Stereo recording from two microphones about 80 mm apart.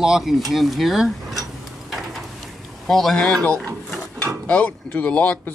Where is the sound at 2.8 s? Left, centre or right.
Centre.